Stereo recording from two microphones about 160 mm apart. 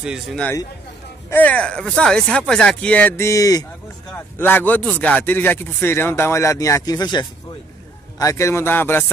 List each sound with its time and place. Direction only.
0.0 s a man's voice: 5° right (ahead or behind)
1.3 s speech: 10° left (ahead or behind)